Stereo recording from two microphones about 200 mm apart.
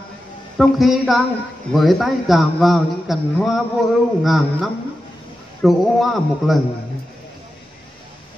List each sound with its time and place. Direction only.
0.6 s a man's voice: centre (ahead or behind)